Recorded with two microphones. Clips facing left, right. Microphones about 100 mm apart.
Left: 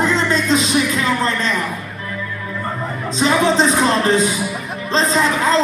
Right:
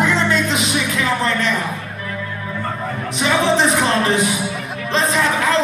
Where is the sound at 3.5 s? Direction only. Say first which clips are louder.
Left 1 dB; 25° left (ahead or behind).